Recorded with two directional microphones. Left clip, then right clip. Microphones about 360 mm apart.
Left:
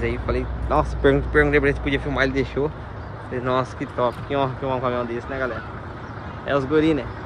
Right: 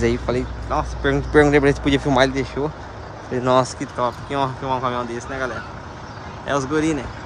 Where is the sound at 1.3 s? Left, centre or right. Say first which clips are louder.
Right 3 dB; centre.